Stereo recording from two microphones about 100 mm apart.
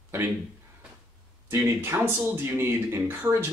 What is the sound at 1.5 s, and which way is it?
Speech, 25° right (ahead or behind).